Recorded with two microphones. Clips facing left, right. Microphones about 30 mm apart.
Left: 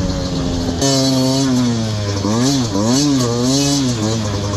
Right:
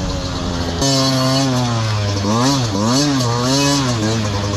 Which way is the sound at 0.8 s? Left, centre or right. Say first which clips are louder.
Left 1 dB; centre.